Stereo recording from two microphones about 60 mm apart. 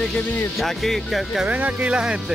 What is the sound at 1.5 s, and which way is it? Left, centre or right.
Speech, right.